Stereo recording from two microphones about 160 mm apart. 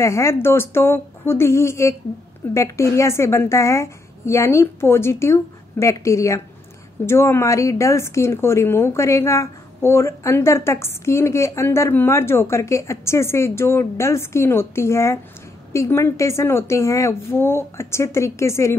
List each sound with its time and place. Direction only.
0.0 s a woman's voice: 15° left (ahead or behind)